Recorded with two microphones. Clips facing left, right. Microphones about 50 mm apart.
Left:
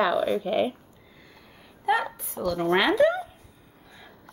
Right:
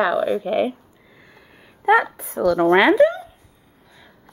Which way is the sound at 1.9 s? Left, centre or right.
Right.